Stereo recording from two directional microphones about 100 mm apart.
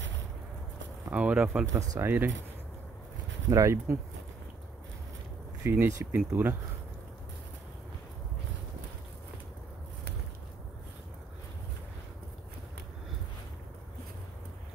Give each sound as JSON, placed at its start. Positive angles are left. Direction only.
{"t": 1.1, "sound": "speech", "side_deg": -10}
{"t": 1.7, "sound": "speech", "side_deg": -30}
{"t": 3.4, "sound": "speech", "side_deg": -30}
{"t": 5.6, "sound": "speech", "side_deg": -25}